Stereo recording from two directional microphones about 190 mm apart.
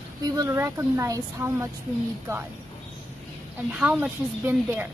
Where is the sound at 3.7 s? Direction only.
10° right (ahead or behind).